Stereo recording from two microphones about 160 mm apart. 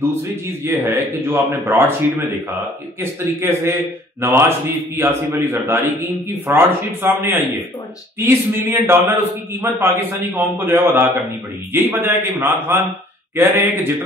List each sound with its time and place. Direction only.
0.1 s a man's voice: 15° right (ahead or behind)